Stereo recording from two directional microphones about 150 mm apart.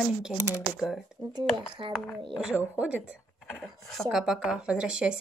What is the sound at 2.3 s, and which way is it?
A woman's voice, 5° right (ahead or behind).